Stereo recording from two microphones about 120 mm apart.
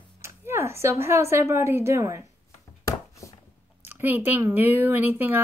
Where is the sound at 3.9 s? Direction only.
15° right (ahead or behind).